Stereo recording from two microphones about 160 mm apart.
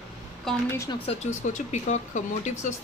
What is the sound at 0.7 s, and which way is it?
Speech, 20° left (ahead or behind).